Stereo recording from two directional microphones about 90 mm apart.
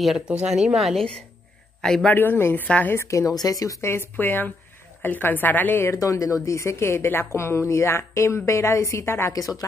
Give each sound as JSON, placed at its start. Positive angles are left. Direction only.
{"t": 0.0, "sound": "a woman's voice", "side_deg": 0}
{"t": 0.3, "sound": "speech", "side_deg": -15}
{"t": 0.6, "sound": "a woman's voice", "side_deg": 0}
{"t": 2.1, "sound": "a woman's voice", "side_deg": 25}
{"t": 3.0, "sound": "a woman's voice", "side_deg": 35}
{"t": 3.8, "sound": "a woman's voice", "side_deg": 25}
{"t": 5.9, "sound": "a woman's voice", "side_deg": 35}
{"t": 9.3, "sound": "a woman's voice", "side_deg": 40}